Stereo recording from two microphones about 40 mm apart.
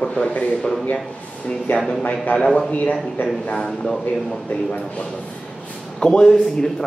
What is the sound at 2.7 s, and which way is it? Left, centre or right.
Speech, left.